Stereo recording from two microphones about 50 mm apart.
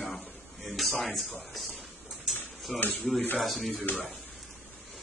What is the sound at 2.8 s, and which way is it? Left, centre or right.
Speech, left.